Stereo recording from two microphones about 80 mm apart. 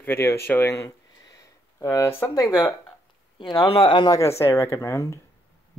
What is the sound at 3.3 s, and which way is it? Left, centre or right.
Speech, left.